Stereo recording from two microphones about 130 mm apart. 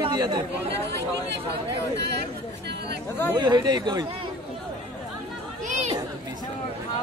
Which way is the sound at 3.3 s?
35° right (ahead or behind).